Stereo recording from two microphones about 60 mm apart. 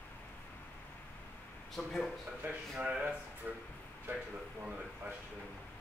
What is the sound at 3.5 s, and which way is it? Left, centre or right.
Speech, right.